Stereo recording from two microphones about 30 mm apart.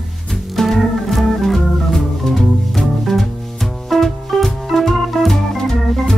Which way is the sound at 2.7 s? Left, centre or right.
Centre.